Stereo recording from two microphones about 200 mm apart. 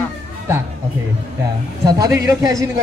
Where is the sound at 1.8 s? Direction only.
15° right (ahead or behind).